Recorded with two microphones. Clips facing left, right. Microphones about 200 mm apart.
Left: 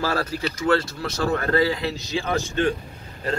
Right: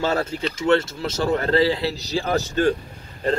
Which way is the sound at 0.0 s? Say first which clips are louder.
Right 2 dB; 25° right (ahead or behind).